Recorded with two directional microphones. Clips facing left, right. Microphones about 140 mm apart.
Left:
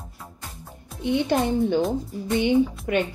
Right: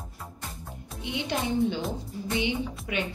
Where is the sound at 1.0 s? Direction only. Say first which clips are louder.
Left 8 dB; 50° left (ahead or behind).